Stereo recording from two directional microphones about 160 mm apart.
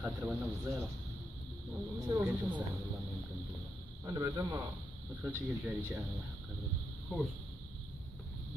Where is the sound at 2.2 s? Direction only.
10° right (ahead or behind).